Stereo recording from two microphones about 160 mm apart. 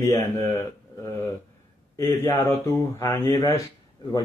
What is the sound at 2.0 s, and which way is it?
Speech, 15° left (ahead or behind).